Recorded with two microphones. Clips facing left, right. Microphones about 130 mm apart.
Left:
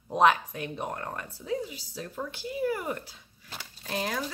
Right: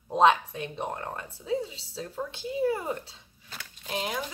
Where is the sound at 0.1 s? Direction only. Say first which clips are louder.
Right 1 dB; 25° right (ahead or behind).